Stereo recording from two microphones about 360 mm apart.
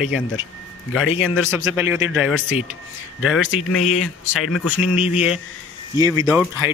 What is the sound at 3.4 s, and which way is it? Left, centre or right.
Speech, left.